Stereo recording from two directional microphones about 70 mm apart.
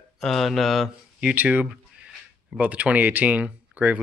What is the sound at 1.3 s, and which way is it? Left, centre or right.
Speech, right.